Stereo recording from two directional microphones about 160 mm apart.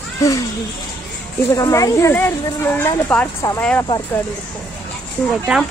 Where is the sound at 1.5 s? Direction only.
20° left (ahead or behind).